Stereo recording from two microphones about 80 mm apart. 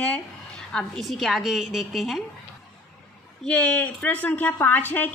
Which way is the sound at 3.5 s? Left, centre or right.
Centre.